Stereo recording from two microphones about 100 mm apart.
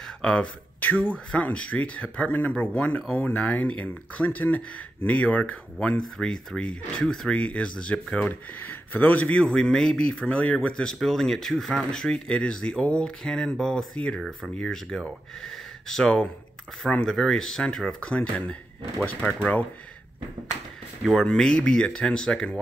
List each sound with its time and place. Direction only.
0.0 s speech: 10° left (ahead or behind)
21.0 s speech: 5° left (ahead or behind)